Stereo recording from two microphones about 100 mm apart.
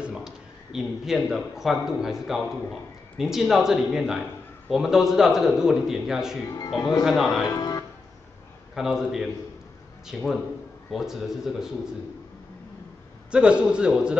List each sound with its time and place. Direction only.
0.0 s a sound: 5° right (ahead or behind)
0.7 s a man's voice: 5° right (ahead or behind)
6.5 s speech: 40° left (ahead or behind)
7.1 s a man's voice: centre (ahead or behind)
7.4 s music: 40° left (ahead or behind)
8.7 s a man's voice: 5° right (ahead or behind)
13.3 s a man's voice: 10° right (ahead or behind)